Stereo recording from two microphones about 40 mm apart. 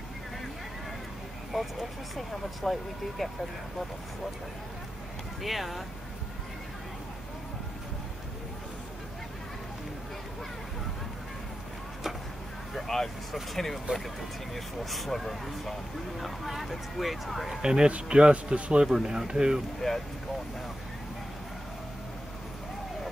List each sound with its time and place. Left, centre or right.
1.5 s speech: centre
5.4 s speech: centre
12.7 s speech: centre
17.6 s speech: centre
18.9 s speech: centre
19.8 s speech: centre